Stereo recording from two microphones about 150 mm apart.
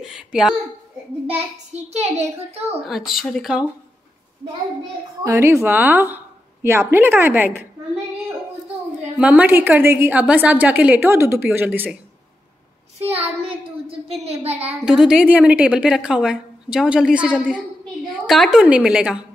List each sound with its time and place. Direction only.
0.0 s speech: 5° right (ahead or behind)
1.2 s a child's voice: 50° right (ahead or behind)
2.9 s speech: centre (ahead or behind)
5.2 s a woman's voice: 20° right (ahead or behind)
9.2 s a woman's voice: 10° right (ahead or behind)
13.1 s a child's voice: 40° right (ahead or behind)
14.9 s a woman's voice: 5° right (ahead or behind)